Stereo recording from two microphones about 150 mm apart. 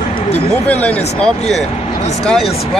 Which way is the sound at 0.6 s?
10° left (ahead or behind).